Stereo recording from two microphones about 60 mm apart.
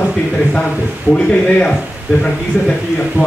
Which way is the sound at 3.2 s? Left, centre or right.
Centre.